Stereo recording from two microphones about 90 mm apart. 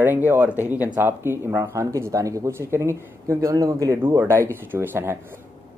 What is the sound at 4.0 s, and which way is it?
Speech, 30° right (ahead or behind).